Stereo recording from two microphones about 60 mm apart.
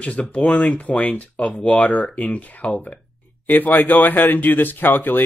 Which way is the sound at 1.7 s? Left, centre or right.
Left.